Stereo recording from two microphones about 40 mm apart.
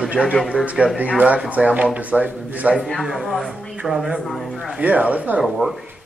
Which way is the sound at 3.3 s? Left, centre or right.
Centre.